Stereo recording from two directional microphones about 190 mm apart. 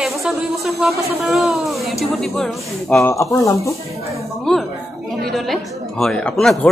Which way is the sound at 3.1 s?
15° left (ahead or behind).